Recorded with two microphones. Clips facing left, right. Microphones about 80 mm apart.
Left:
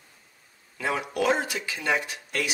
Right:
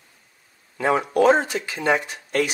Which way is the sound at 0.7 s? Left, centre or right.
Right.